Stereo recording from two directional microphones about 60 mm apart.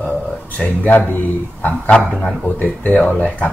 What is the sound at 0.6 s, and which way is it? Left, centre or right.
Speech, left.